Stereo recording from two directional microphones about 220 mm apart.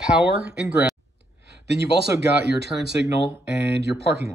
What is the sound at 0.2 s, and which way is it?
Speech, 5° right (ahead or behind).